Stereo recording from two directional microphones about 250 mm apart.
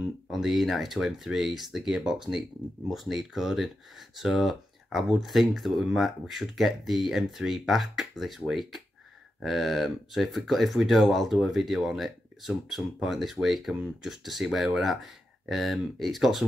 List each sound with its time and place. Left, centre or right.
0.3 s speech: centre